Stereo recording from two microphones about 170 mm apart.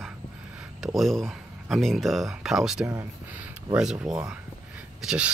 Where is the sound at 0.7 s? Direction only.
Centre (ahead or behind).